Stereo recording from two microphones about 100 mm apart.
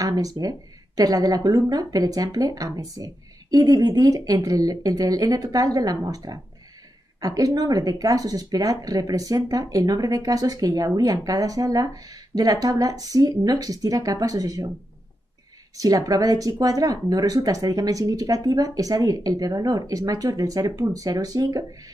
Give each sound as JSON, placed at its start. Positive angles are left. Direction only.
{"t": 0.0, "sound": "speech", "side_deg": -40}
{"t": 15.8, "sound": "speech", "side_deg": -35}